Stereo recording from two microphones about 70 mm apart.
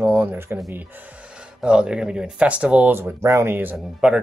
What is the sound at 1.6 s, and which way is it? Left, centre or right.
Speech, centre.